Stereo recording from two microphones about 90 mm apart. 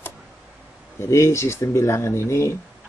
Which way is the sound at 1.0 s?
30° left (ahead or behind).